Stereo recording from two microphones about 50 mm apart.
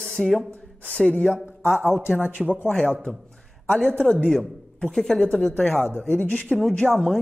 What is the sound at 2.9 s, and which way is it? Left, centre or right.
Speech, left.